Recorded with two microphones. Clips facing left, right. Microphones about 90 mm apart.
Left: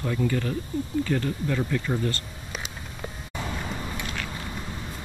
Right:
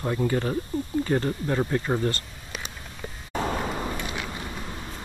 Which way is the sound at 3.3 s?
45° right (ahead or behind).